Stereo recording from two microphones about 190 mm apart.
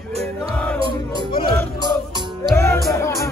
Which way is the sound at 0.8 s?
25° right (ahead or behind).